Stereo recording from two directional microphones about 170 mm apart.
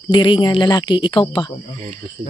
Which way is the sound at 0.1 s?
30° left (ahead or behind).